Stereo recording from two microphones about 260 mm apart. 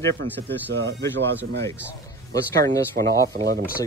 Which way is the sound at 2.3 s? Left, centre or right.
Centre.